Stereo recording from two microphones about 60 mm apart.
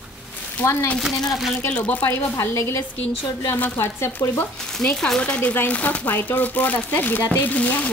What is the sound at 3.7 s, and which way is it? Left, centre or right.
Speech, left.